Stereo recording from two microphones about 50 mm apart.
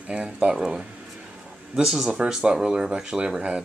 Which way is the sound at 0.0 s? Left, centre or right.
Right.